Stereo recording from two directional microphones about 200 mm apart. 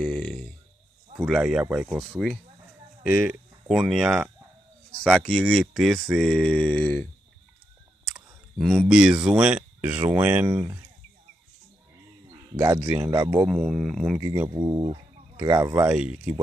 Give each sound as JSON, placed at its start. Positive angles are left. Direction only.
{"t": 0.0, "sound": "a sound", "side_deg": 5}
{"t": 1.2, "sound": "speech", "side_deg": -5}
{"t": 8.5, "sound": "speech", "side_deg": 0}
{"t": 12.5, "sound": "speech", "side_deg": -15}
{"t": 13.5, "sound": "speech", "side_deg": 0}
{"t": 14.2, "sound": "speech", "side_deg": -15}
{"t": 15.9, "sound": "speech", "side_deg": -5}